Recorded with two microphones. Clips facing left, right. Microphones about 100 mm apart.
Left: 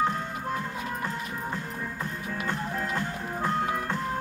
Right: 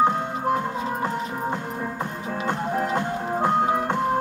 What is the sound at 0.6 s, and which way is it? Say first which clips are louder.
Music: right 7 dB; 30° right (ahead or behind).